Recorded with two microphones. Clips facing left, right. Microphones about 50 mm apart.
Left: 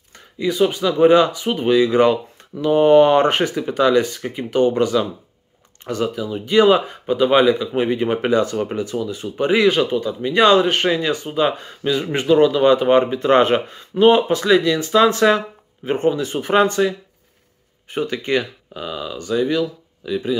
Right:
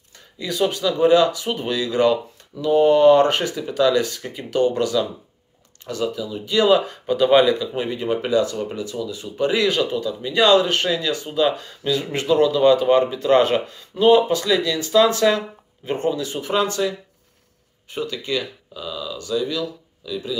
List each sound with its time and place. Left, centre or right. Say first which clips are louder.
0.4 s speech: left 4 dB; centre
7.1 s speech: left 1 dB; centre
7.5 s speech: left 5 dB; left
17.8 s speech: left 4 dB; left